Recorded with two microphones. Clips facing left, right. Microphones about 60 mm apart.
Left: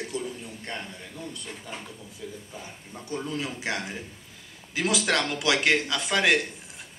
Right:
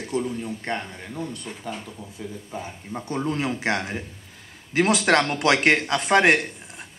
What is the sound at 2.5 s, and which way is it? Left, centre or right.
A man's voice, right.